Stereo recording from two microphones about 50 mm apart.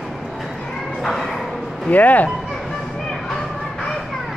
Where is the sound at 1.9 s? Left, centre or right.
Left.